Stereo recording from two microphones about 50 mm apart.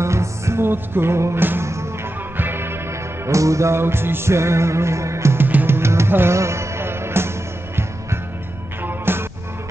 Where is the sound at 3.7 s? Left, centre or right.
Right.